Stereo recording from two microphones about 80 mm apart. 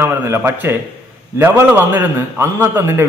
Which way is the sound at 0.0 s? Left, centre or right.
Right.